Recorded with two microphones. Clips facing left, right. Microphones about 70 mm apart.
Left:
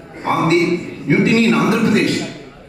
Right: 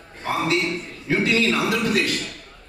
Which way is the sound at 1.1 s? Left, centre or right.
Left.